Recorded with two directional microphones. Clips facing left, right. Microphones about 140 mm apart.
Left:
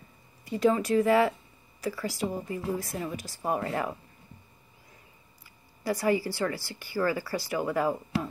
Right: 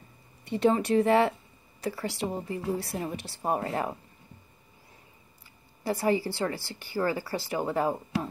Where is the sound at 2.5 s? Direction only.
35° right (ahead or behind).